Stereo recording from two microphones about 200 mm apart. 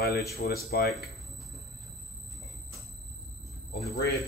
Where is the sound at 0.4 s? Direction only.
50° left (ahead or behind).